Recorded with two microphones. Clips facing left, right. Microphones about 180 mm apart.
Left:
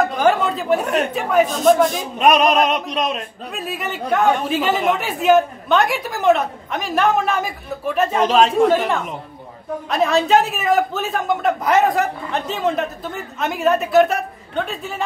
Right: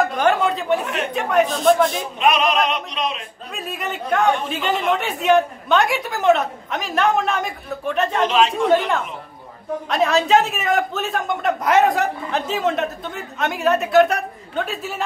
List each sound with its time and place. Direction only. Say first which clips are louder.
0.0 s a sound: left 1 dB; centre (ahead or behind)
1.1 s a man's voice: right 2 dB; centre (ahead or behind)
2.1 s speech: left 4 dB; 45° left (ahead or behind)
3.5 s a man's voice: left 1 dB; centre (ahead or behind)
8.3 s speech: left 4 dB; 45° left (ahead or behind)
8.7 s a man's voice: even; centre (ahead or behind)